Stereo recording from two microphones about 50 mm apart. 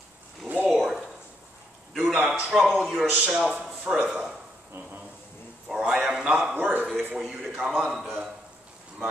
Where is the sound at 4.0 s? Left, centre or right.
Centre.